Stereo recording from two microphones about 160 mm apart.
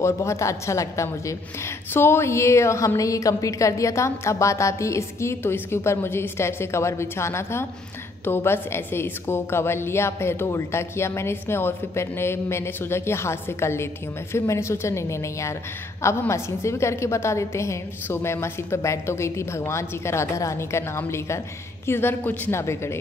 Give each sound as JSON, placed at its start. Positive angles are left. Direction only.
{"t": 0.0, "sound": "a woman's voice", "side_deg": 20}